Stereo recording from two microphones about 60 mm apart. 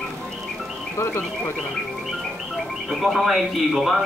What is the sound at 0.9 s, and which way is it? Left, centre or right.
Speech, left.